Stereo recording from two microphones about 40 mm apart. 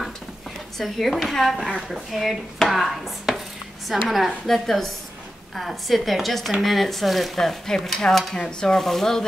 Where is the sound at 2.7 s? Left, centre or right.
Centre.